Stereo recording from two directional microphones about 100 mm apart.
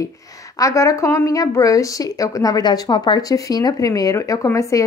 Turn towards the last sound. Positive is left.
turn(degrees=30)  # may be behind; listen again after turning